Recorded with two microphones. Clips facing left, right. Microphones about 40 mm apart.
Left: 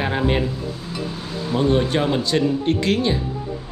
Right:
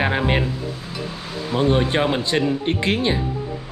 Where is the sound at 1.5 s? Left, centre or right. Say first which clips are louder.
Even; centre.